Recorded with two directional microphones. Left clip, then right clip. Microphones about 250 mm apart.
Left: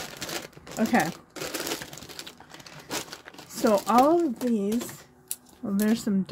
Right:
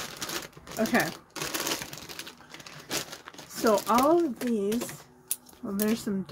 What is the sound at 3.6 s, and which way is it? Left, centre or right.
Speech, left.